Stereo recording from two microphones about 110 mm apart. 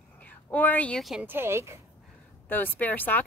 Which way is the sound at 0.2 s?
15° left (ahead or behind).